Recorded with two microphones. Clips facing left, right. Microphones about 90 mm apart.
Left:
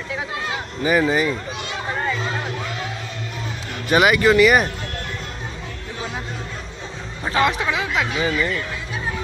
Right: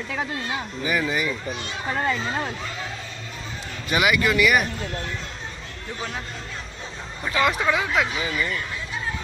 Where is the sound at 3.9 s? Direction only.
40° left (ahead or behind).